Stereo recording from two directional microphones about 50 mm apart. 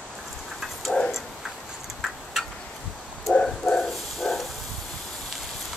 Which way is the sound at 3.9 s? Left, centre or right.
Centre.